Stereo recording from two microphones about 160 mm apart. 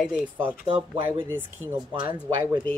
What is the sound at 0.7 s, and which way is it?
Speech, 30° right (ahead or behind).